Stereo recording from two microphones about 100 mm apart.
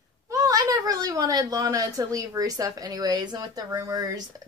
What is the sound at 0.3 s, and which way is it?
Speech, 35° right (ahead or behind).